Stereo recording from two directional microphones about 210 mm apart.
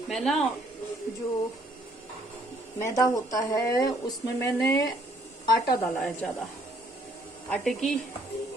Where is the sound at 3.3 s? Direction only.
15° left (ahead or behind).